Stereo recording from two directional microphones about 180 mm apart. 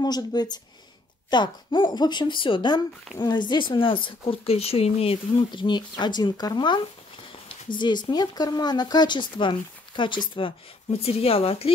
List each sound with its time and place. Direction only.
0.0 s speech: 20° left (ahead or behind)